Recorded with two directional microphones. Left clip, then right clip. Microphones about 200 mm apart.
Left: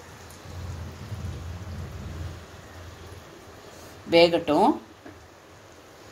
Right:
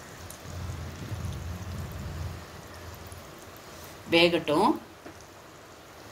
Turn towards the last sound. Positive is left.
turn(degrees=25)  # may be behind; listen again after turning